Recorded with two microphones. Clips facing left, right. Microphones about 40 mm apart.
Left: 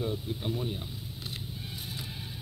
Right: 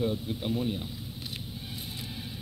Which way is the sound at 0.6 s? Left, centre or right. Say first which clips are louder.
Right 4 dB; centre.